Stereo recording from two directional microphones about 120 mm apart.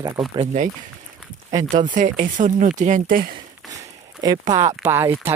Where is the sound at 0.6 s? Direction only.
90° right.